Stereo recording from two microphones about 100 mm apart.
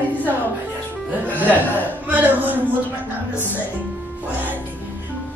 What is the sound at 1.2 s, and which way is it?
Music, 20° right (ahead or behind).